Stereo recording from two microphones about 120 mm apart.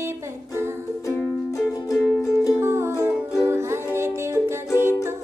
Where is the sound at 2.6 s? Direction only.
20° right (ahead or behind).